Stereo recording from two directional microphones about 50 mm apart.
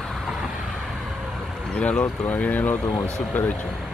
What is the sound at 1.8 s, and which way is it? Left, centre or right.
Speech, left.